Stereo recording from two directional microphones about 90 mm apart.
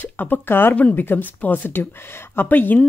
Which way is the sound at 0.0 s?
20° left (ahead or behind).